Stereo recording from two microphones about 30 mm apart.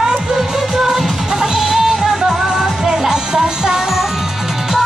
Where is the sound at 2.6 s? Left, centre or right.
Centre.